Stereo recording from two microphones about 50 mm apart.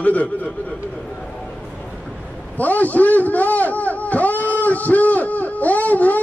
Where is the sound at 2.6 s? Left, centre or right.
Left.